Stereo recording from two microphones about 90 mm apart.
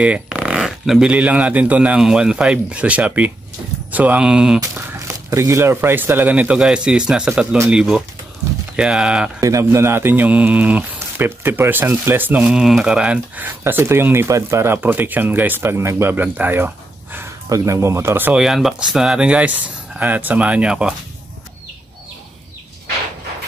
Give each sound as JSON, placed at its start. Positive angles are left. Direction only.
{"t": 0.0, "sound": "speech", "side_deg": -15}
{"t": 4.9, "sound": "speech", "side_deg": -35}
{"t": 9.4, "sound": "speech", "side_deg": -35}
{"t": 13.7, "sound": "speech", "side_deg": -25}
{"t": 18.3, "sound": "speech", "side_deg": -5}